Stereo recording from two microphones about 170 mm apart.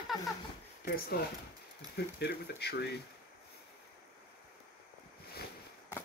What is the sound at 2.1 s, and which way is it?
Speech, 75° left (ahead or behind).